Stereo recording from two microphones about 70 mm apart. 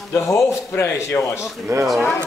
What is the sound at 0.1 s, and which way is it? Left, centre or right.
Speech, left.